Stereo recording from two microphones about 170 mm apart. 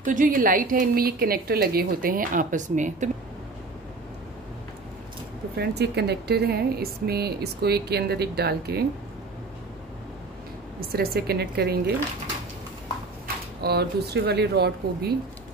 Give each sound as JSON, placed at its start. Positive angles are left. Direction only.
{"t": 0.0, "sound": "a woman's voice", "side_deg": -50}
{"t": 5.6, "sound": "speech", "side_deg": -75}
{"t": 10.9, "sound": "speech", "side_deg": -65}
{"t": 13.6, "sound": "speech", "side_deg": -70}